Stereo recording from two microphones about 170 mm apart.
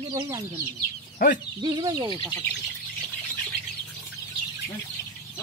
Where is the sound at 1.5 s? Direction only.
25° right (ahead or behind).